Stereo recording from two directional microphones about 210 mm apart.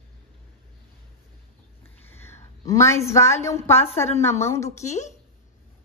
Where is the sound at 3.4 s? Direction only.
10° left (ahead or behind).